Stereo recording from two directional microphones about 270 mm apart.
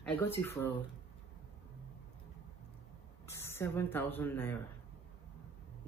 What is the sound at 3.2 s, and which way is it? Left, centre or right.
Speech, centre.